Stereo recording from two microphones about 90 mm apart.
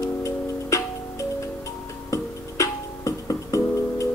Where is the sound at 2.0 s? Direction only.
35° left (ahead or behind).